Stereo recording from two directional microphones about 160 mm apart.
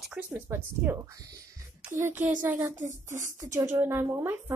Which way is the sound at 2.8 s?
50° right (ahead or behind).